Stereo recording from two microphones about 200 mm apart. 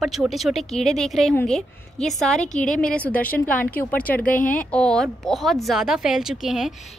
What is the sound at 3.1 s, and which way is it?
A woman's voice, 5° left (ahead or behind).